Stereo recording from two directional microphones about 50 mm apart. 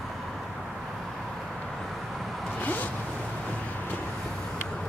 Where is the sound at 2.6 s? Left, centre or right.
Left.